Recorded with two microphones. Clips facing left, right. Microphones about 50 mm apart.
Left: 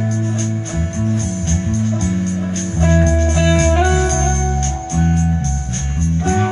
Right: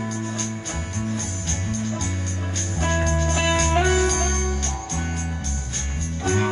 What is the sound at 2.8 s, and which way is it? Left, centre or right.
Music, left.